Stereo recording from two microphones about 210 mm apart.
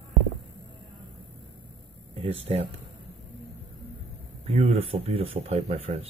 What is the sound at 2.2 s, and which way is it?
Speech, 25° right (ahead or behind).